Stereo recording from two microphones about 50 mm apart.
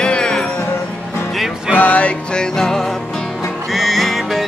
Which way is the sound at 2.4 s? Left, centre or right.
Centre.